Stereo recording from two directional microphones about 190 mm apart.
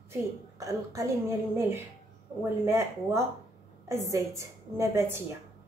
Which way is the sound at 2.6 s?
15° right (ahead or behind).